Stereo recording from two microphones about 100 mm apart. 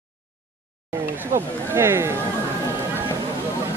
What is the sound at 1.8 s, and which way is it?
Speech, 25° right (ahead or behind).